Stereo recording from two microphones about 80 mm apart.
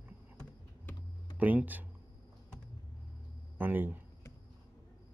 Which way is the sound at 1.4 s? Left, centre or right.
Centre.